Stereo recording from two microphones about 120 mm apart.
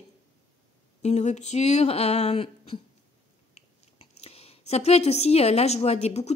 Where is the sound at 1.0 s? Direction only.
70° left (ahead or behind).